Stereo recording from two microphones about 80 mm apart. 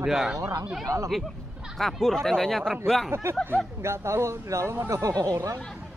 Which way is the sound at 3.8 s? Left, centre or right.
Right.